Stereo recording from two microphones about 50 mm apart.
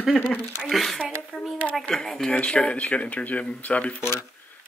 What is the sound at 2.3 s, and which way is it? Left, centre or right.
Speech, left.